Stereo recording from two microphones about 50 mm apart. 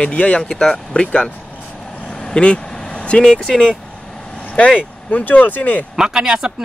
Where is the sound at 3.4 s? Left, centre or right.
Centre.